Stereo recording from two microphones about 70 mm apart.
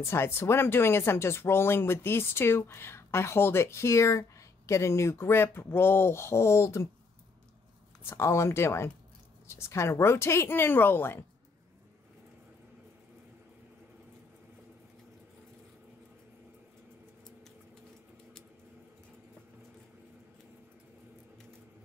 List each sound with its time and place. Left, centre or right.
0.0 s speech: left
8.0 s speech: left